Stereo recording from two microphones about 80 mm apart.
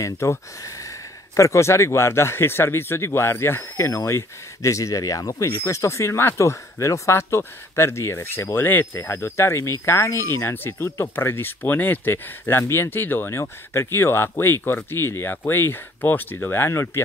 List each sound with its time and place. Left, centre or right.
0.0 s speech: left